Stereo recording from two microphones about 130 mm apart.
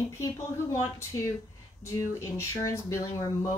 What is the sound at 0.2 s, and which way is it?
Speech, 25° left (ahead or behind).